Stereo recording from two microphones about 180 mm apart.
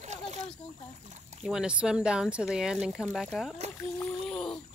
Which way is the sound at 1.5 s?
5° right (ahead or behind).